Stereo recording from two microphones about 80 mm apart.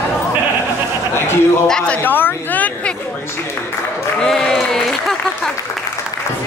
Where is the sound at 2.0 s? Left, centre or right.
Left.